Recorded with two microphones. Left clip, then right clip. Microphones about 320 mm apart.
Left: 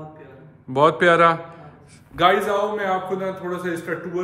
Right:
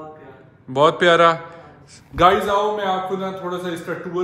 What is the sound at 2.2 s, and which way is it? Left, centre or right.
Speech, right.